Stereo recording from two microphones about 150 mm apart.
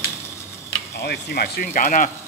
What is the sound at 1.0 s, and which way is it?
Speech, 90° left.